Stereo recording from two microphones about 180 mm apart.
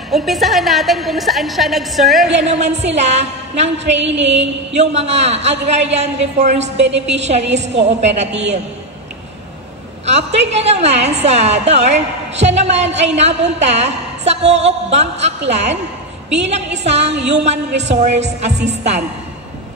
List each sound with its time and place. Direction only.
0.1 s a woman's voice: centre (ahead or behind)
2.3 s a woman's voice: 40° right (ahead or behind)
3.7 s a sound: 80° right
4.9 s a woman's voice: 40° right (ahead or behind)
10.0 s a woman's voice: 40° right (ahead or behind)
16.8 s a woman's voice: 35° right (ahead or behind)